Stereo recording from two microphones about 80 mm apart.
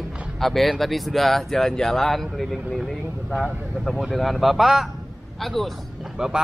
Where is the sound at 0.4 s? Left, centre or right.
Centre.